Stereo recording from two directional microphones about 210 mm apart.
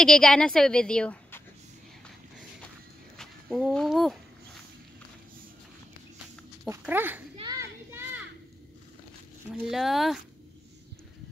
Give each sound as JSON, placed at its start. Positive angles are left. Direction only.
{"t": 0.0, "sound": "a woman's voice", "side_deg": 5}
{"t": 3.2, "sound": "speech", "side_deg": 0}
{"t": 6.7, "sound": "speech", "side_deg": -10}
{"t": 7.3, "sound": "children playing", "side_deg": -15}
{"t": 9.5, "sound": "a woman's voice", "side_deg": 0}